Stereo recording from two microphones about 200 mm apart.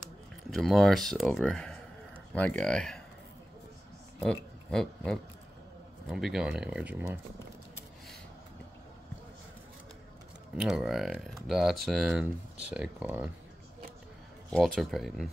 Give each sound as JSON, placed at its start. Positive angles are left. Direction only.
{"t": 0.0, "sound": "speech", "side_deg": 0}
{"t": 4.2, "sound": "speech", "side_deg": 5}
{"t": 10.5, "sound": "speech", "side_deg": 0}
{"t": 14.8, "sound": "speech", "side_deg": 0}